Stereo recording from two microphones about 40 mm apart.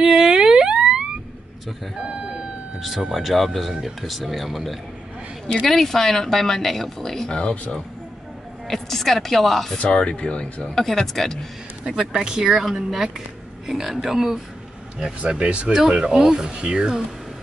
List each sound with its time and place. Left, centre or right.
0.0 s a sound: centre
2.0 s speech: right
3.1 s speech: centre
7.2 s speech: left
8.6 s speech: centre
9.8 s speech: centre
10.7 s speech: centre
11.8 s speech: centre
13.7 s speech: centre
15.0 s speech: right